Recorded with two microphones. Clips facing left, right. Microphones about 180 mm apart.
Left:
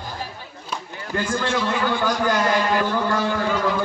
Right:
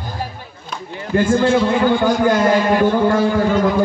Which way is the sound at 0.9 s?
25° right (ahead or behind).